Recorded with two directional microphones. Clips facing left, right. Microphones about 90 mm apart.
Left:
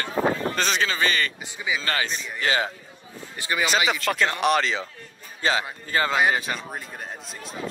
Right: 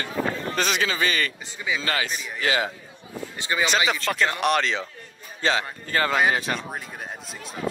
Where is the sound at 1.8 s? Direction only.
35° left (ahead or behind).